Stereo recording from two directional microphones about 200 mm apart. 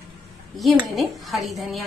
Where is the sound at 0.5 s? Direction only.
Centre (ahead or behind).